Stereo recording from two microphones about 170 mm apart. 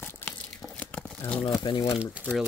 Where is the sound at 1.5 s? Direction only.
25° left (ahead or behind).